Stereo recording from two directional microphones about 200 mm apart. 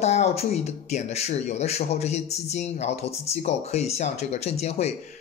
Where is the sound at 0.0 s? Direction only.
35° left (ahead or behind).